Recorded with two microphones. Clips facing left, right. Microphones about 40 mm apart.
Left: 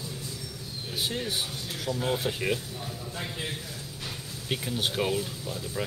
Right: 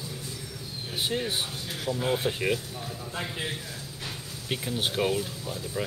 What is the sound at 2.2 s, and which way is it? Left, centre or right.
Speech, centre.